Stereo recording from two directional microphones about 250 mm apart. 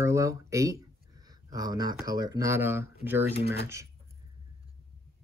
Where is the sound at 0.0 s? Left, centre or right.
Centre.